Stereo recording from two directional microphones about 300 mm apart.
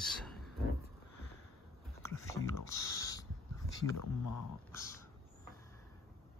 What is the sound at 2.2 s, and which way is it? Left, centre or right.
Mechanisms, centre.